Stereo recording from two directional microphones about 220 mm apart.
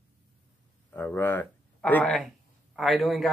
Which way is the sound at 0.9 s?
10° left (ahead or behind).